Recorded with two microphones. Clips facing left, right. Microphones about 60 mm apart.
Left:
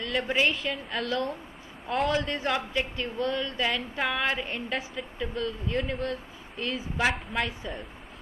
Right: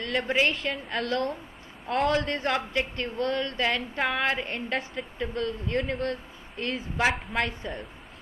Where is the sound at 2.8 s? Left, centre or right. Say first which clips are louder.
Right 1 dB; right.